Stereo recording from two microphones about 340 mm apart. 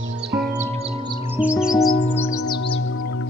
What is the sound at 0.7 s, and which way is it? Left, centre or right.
Music, centre.